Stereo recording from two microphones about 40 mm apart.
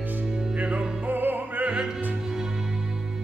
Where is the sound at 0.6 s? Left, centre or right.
Right.